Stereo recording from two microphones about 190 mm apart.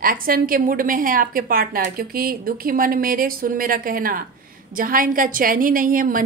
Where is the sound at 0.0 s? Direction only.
50° right (ahead or behind).